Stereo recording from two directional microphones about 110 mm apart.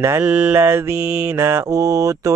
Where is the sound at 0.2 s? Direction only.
10° right (ahead or behind).